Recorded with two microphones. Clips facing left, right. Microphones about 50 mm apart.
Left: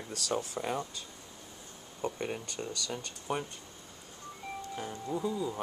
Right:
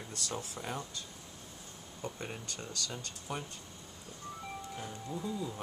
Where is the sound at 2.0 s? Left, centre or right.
Left.